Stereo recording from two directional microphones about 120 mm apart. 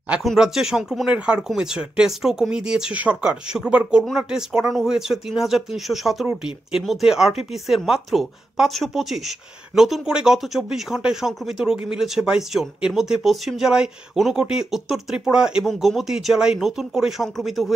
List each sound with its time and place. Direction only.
0.1 s speech: 5° right (ahead or behind)